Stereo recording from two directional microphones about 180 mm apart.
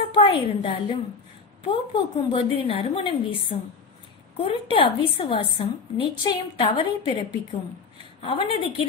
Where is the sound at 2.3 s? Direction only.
30° left (ahead or behind).